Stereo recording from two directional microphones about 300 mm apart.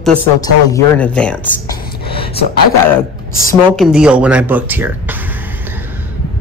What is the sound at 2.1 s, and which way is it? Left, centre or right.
Speech, centre.